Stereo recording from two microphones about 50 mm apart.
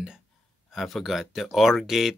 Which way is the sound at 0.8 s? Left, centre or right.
Centre.